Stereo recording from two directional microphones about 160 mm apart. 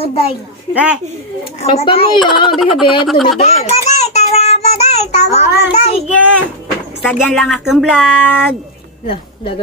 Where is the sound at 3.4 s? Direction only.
40° left (ahead or behind).